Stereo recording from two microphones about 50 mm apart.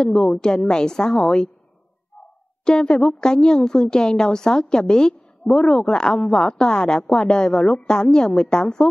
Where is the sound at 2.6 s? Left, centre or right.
Centre.